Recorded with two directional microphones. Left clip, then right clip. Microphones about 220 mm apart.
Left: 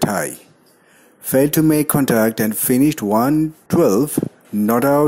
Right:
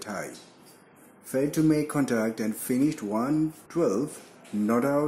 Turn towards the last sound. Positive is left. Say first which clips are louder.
# left 10 dB
turn(degrees=40)  # may be behind; listen again after turning